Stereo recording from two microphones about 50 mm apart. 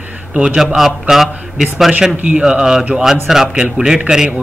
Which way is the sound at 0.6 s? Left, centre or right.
Centre.